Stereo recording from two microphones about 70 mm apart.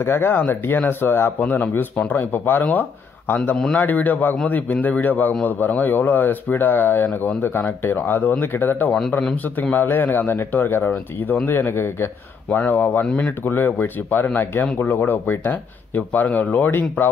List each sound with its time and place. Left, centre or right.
0.0 s speech: left